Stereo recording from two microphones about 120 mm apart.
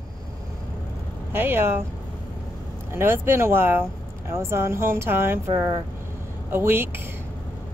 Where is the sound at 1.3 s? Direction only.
15° right (ahead or behind).